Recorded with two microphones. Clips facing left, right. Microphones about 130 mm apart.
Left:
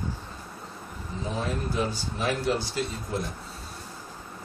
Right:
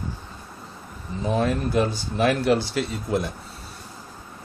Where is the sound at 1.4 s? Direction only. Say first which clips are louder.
Right 7 dB; 70° right (ahead or behind).